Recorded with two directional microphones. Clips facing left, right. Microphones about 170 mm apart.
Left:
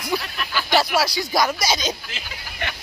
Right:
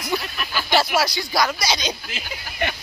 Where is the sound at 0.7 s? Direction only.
Centre (ahead or behind).